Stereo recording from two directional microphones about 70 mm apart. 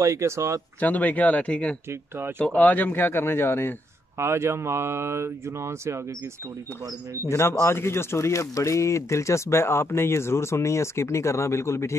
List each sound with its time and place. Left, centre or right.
0.0 s speech: right
0.7 s speech: left
1.9 s speech: right
2.3 s speech: left
4.2 s speech: right
7.2 s speech: left